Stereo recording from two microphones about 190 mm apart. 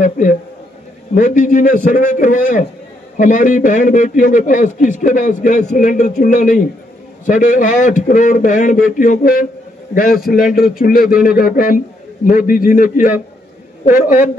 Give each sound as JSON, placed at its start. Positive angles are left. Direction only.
{"t": 0.0, "sound": "a man's voice", "side_deg": 45}